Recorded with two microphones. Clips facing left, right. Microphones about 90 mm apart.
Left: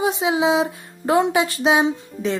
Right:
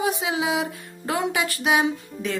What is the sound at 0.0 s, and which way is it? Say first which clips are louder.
Speech: left 5 dB; 25° left (ahead or behind).